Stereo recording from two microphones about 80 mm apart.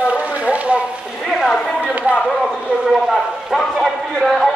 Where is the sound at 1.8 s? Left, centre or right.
Right.